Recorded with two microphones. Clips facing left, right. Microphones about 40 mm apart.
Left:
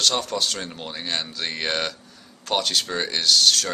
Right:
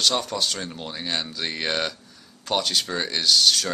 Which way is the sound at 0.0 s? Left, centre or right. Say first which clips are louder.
Even; centre.